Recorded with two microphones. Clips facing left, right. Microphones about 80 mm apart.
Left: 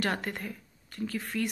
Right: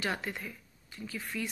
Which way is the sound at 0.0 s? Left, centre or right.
Left.